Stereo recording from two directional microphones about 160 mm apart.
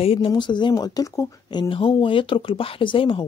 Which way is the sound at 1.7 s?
30° left (ahead or behind).